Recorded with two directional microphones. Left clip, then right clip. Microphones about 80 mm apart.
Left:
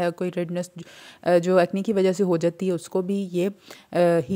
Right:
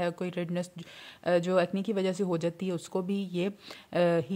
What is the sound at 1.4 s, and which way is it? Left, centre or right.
Speech, left.